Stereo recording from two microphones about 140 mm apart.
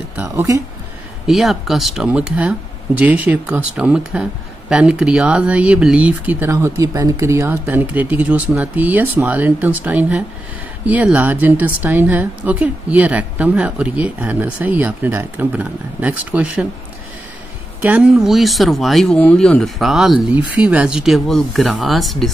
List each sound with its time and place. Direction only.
0.2 s speech: 20° right (ahead or behind)
1.2 s speech: centre (ahead or behind)
17.8 s speech: 10° right (ahead or behind)